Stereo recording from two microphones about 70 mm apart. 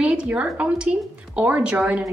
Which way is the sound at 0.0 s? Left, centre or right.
Centre.